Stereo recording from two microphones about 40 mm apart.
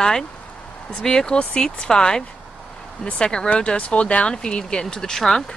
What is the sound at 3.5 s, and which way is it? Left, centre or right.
Speech, left.